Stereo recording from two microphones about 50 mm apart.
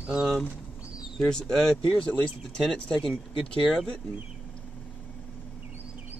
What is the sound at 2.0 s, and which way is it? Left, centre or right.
Speech, left.